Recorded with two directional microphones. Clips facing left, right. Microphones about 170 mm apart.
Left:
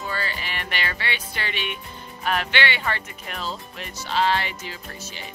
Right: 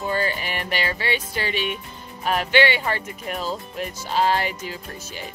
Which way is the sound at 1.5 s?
40° right (ahead or behind).